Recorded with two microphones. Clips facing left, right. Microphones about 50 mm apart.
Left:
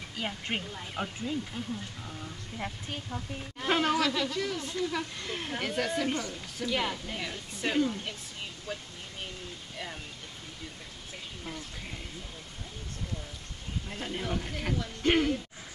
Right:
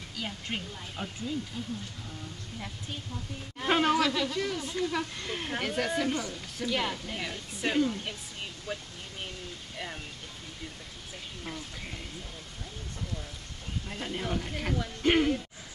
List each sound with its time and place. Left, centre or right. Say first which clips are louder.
0.2 s speech: left 2 dB; left
2.6 s speech: left 4 dB; left
3.5 s speech: right 2 dB; centre
13.8 s speech: right 1 dB; centre